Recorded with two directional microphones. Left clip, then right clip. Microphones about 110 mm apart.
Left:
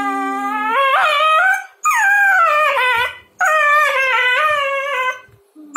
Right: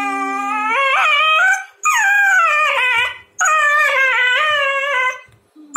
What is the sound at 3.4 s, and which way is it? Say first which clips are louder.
Dog: left 1 dB; centre (ahead or behind).